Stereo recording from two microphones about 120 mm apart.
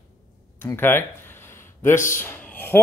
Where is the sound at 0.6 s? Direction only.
20° left (ahead or behind).